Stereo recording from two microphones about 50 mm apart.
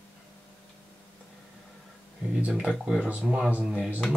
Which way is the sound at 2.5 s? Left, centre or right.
Centre.